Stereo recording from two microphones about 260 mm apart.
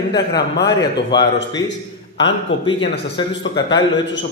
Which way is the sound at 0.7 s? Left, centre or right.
Centre.